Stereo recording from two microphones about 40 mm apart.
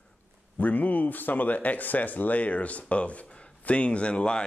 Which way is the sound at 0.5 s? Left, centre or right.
Left.